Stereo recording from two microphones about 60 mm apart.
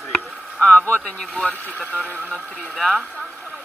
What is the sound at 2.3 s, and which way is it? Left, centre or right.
Speech, centre.